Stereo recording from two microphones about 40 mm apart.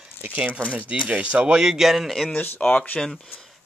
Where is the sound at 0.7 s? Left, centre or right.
Right.